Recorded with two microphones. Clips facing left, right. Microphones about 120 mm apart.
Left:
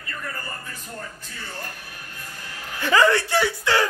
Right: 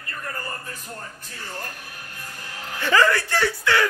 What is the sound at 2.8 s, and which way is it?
Speech, 15° left (ahead or behind).